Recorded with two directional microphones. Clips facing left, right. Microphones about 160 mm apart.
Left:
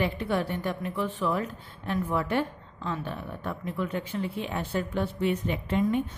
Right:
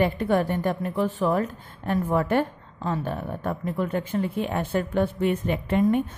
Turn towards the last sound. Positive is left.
turn(degrees=-55)  # may be behind; listen again after turning